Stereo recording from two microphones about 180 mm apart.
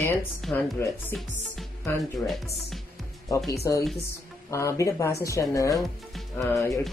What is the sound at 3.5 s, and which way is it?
Speech, 15° left (ahead or behind).